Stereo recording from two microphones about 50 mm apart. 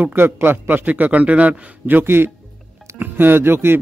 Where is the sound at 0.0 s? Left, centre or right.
Right.